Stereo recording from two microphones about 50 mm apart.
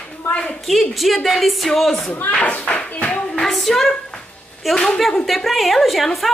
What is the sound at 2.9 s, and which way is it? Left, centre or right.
Clapping, left.